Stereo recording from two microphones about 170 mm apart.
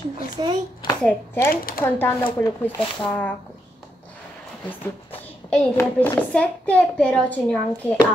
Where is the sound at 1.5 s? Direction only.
60° left (ahead or behind).